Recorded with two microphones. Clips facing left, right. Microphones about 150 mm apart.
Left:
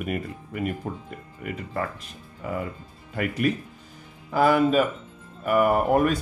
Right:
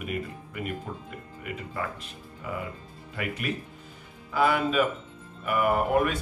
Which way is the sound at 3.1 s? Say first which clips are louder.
Left 7 dB; 45° left (ahead or behind).